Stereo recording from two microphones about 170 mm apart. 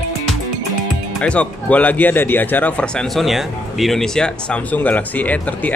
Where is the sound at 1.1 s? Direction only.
5° left (ahead or behind).